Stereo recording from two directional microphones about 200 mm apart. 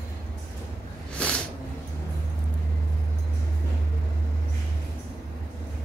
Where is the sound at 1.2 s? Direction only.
5° left (ahead or behind).